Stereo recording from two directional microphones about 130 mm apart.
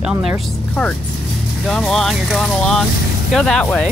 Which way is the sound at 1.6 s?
5° left (ahead or behind).